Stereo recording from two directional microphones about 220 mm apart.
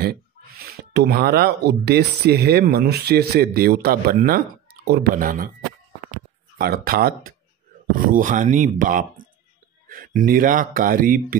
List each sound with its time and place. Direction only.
0.0 s speech: 45° right (ahead or behind)
6.6 s speech: 45° right (ahead or behind)